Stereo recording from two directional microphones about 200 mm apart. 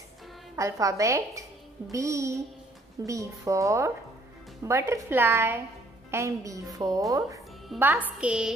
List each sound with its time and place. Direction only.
0.6 s a woman's voice: 15° right (ahead or behind)